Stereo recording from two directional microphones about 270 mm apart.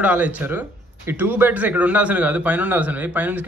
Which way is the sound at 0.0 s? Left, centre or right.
Centre.